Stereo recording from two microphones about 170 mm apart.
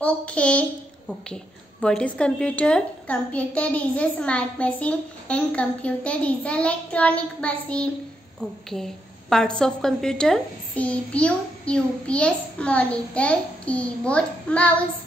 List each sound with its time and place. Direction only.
0.0 s a child's voice: 5° left (ahead or behind)